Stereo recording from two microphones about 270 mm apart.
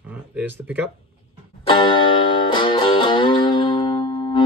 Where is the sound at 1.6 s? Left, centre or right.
Centre.